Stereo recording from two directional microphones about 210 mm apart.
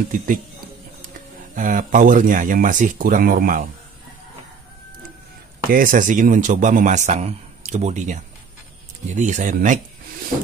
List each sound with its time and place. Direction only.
1.1 s speech: 40° right (ahead or behind)
5.7 s speech: 40° right (ahead or behind)